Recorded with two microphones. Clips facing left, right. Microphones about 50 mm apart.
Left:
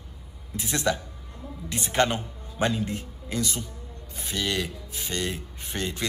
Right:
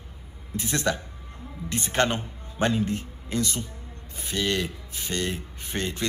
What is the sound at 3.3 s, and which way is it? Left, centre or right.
Speech, left.